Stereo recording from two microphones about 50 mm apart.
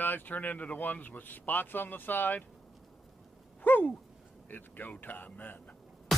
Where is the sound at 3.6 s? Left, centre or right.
Left.